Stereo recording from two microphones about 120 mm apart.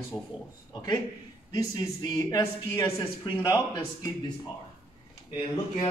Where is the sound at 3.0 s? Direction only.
45° left (ahead or behind).